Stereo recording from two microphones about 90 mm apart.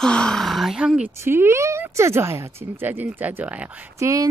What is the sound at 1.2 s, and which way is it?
Speech, 25° right (ahead or behind).